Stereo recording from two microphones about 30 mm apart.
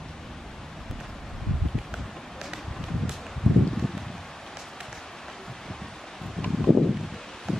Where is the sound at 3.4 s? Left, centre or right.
Centre.